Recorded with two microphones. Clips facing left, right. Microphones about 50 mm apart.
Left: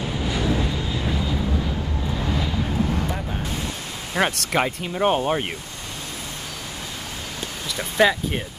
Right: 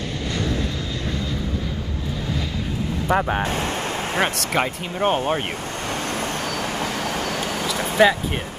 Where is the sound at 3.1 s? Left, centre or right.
Right.